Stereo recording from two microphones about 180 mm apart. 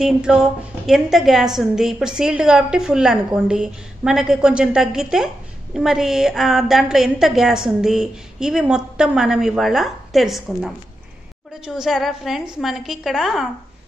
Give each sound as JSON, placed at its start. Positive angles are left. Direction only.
{"t": 0.0, "sound": "a woman's voice", "side_deg": -5}